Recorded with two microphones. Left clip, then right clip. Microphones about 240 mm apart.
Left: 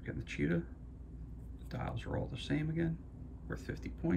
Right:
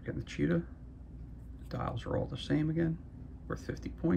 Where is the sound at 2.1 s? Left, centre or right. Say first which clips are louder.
Right 4 dB; centre.